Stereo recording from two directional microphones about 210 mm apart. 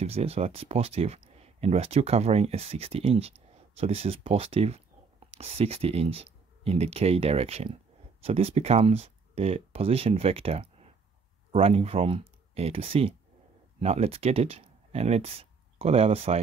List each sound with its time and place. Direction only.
0.0 s speech: 30° right (ahead or behind)